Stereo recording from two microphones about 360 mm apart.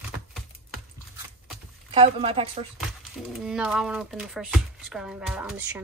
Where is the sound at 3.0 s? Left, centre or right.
Centre.